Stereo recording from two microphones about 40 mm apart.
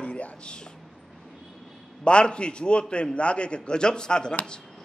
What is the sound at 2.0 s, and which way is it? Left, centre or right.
A man's voice, left.